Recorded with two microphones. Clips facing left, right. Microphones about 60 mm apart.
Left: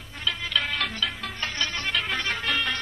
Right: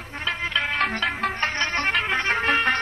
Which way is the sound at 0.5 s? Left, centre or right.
Right.